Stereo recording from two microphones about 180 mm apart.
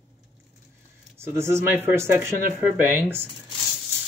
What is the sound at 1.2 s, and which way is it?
Speech, 15° right (ahead or behind).